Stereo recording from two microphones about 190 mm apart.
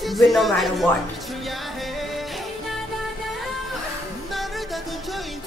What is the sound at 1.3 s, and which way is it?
Music, centre (ahead or behind).